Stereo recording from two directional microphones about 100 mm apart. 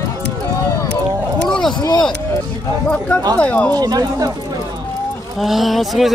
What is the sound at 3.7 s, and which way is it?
Speech, 40° right (ahead or behind).